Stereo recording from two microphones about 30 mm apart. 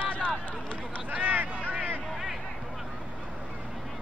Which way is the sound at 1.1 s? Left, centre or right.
Right.